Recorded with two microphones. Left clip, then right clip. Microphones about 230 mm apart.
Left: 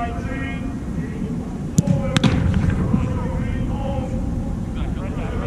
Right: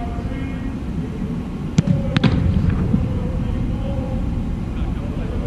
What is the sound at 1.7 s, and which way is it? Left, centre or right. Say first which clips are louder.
Basketball bounce: left 1 dB; centre.